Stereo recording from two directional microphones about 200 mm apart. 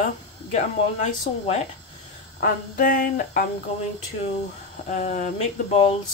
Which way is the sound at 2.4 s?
45° left (ahead or behind).